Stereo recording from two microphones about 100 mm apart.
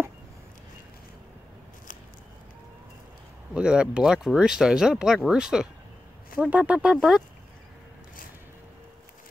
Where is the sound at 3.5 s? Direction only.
10° right (ahead or behind).